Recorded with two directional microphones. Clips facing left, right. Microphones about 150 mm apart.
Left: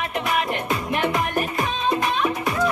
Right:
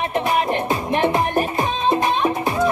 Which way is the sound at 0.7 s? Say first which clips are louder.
Right 4 dB; 30° right (ahead or behind).